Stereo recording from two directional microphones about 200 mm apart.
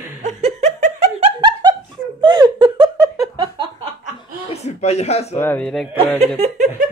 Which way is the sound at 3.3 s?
20° right (ahead or behind).